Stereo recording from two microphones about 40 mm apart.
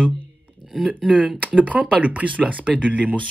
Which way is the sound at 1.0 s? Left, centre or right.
Centre.